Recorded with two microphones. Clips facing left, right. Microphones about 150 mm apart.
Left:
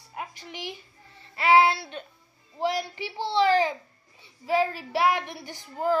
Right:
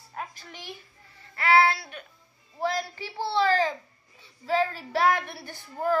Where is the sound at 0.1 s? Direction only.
15° left (ahead or behind).